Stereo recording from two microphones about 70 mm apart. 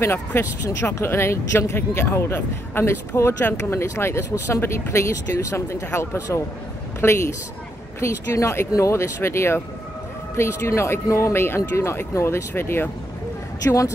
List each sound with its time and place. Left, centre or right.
0.0 s speech: left
3.8 s speech: left